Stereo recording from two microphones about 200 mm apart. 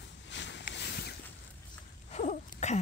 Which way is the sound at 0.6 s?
55° left (ahead or behind).